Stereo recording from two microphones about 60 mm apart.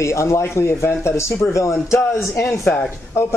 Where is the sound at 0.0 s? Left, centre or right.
Left.